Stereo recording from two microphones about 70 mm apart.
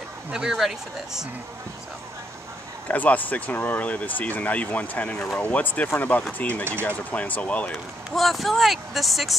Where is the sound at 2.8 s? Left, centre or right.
Left.